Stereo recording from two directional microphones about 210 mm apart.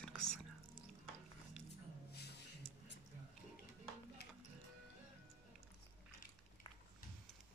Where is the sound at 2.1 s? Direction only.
50° left (ahead or behind).